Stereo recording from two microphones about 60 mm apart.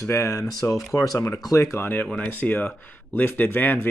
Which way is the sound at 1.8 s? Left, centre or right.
Left.